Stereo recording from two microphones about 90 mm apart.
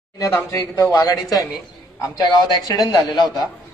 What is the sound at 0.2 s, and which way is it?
Speech, 30° left (ahead or behind).